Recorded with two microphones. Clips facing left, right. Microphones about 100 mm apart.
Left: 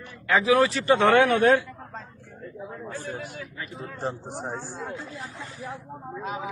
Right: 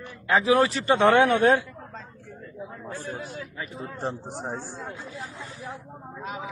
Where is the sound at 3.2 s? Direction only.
20° right (ahead or behind).